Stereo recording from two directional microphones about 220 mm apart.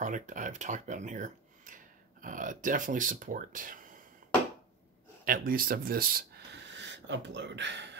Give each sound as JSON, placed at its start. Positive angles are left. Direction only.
{"t": 0.0, "sound": "speech", "side_deg": -35}
{"t": 5.2, "sound": "speech", "side_deg": -40}